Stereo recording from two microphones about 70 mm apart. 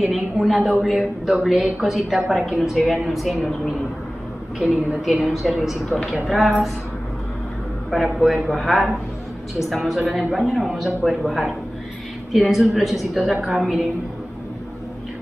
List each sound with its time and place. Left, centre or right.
0.0 s a woman's voice: centre
5.0 s a woman's voice: centre
7.9 s a woman's voice: centre